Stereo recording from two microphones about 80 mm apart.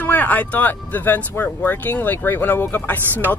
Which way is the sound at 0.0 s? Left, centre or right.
Left.